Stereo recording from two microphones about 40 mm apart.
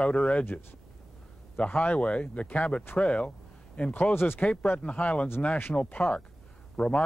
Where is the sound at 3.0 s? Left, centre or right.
Left.